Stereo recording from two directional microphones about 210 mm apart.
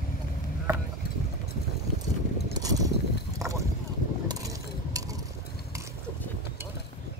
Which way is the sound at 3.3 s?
15° right (ahead or behind).